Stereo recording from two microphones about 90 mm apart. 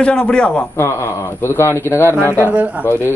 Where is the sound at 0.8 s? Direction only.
30° left (ahead or behind).